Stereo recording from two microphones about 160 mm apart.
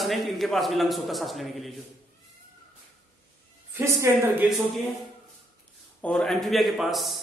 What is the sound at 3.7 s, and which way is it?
Speech, 15° right (ahead or behind).